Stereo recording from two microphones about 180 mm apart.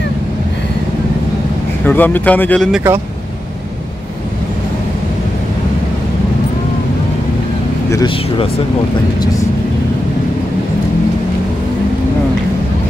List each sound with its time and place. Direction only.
1.9 s speech: 10° left (ahead or behind)
2.7 s speech: 15° right (ahead or behind)
7.9 s speech: 25° left (ahead or behind)